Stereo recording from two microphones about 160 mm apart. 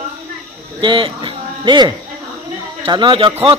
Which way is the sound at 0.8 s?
30° right (ahead or behind).